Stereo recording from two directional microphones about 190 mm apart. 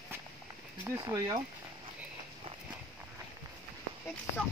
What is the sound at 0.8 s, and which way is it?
Speech, 15° right (ahead or behind).